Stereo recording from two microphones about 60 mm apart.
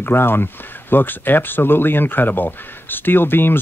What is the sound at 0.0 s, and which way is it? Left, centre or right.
Speech, left.